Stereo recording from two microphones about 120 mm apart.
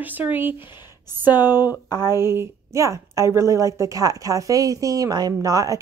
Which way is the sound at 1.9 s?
30° left (ahead or behind).